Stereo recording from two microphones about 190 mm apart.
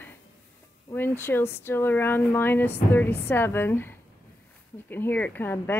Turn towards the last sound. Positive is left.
turn(degrees=10)  # may be behind; listen again after turning